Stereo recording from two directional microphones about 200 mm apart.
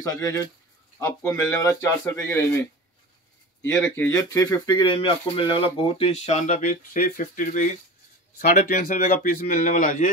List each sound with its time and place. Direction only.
0.0 s speech: 15° left (ahead or behind)
3.7 s a man's voice: 5° left (ahead or behind); by 10.0 s 40° left (ahead or behind)